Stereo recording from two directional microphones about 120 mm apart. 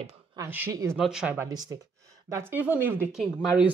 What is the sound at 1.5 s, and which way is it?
Speech, 35° right (ahead or behind).